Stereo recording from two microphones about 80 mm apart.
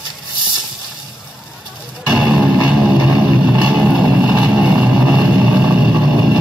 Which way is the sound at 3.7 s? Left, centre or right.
Centre.